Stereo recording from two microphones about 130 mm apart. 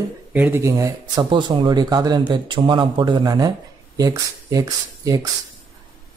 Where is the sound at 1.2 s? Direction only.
35° right (ahead or behind).